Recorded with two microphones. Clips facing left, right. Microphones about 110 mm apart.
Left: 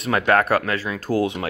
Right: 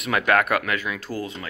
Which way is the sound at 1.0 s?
65° left (ahead or behind).